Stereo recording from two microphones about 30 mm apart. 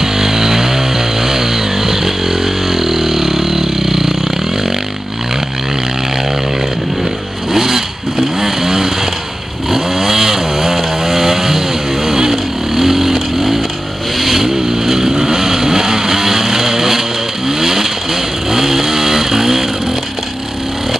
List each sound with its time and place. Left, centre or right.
0.0 s chainsaw: centre
7.5 s vehicle: centre